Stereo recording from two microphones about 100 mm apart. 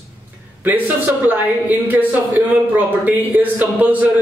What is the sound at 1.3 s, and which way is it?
Speech, 20° right (ahead or behind).